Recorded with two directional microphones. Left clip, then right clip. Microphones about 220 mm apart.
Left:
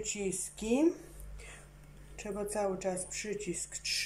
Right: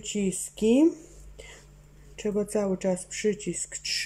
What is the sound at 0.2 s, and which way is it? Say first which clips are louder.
Speech: right 8 dB; 45° right (ahead or behind).